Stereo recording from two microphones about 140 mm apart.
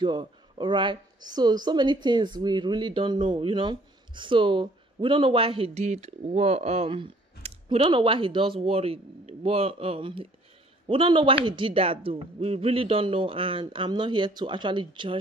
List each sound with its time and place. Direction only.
0.0 s speech: 35° right (ahead or behind)
5.9 s speech: 50° right (ahead or behind); by 15.1 s 35° right (ahead or behind)